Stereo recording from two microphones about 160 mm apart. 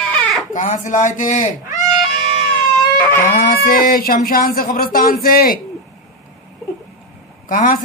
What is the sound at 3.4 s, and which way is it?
Speech, 65° left (ahead or behind).